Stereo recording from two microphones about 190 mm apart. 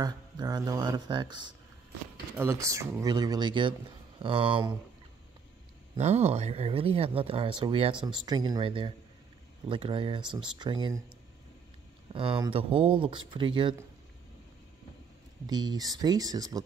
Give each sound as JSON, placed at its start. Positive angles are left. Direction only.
{"t": 0.0, "sound": "speech", "side_deg": -20}
{"t": 5.9, "sound": "speech", "side_deg": -35}
{"t": 12.1, "sound": "speech", "side_deg": -25}
{"t": 15.4, "sound": "speech", "side_deg": -20}